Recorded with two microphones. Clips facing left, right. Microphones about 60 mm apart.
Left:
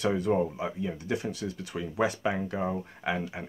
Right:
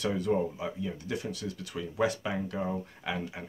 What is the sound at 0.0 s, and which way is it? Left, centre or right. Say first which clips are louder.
Speech: left 2 dB; centre.